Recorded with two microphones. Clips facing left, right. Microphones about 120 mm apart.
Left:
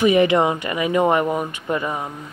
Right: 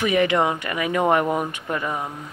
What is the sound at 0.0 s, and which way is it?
Speech, 15° left (ahead or behind).